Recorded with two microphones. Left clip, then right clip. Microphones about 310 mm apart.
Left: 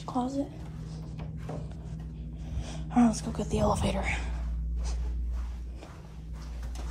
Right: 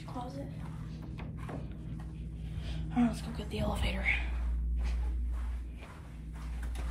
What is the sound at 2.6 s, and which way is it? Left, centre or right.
Speech, centre.